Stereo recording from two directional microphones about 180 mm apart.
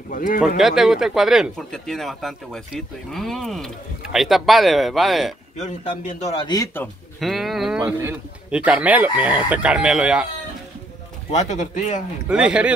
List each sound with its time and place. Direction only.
0.1 s speech: 50° left (ahead or behind)
0.6 s speech: centre (ahead or behind)
5.6 s a man's voice: 45° left (ahead or behind)
6.4 s speech: 20° left (ahead or behind)
7.2 s speech: centre (ahead or behind)
11.2 s speech: 40° left (ahead or behind)
12.3 s speech: 5° right (ahead or behind)